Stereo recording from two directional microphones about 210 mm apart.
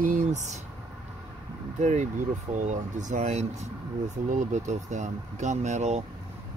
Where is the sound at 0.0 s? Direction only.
40° right (ahead or behind).